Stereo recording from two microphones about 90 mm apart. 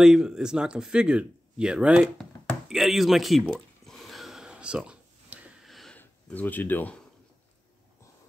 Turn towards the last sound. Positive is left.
turn(degrees=20)  # may be behind; listen again after turning